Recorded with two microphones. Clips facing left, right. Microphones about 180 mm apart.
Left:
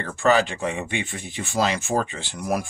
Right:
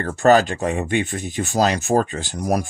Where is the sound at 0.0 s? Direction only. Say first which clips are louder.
Right 5 dB; 45° right (ahead or behind).